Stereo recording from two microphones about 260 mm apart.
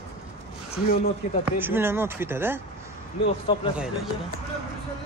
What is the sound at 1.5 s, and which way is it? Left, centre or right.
Speech, centre.